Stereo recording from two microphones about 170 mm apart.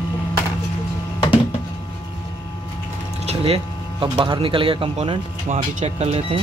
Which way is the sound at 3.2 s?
35° right (ahead or behind).